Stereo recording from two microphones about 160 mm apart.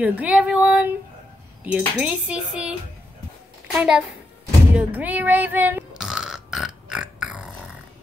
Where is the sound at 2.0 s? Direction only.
5° right (ahead or behind).